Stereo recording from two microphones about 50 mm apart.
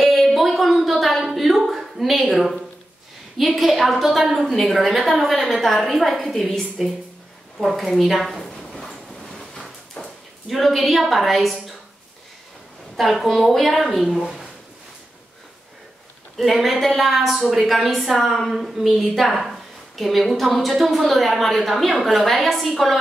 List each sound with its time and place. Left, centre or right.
0.0 s a sound: centre
3.3 s a woman's voice: centre
8.6 s train: centre
9.1 s vehicle: centre
10.0 s a sound: left
10.5 s a woman's voice: centre
12.9 s a woman's voice: centre
16.3 s a woman's voice: centre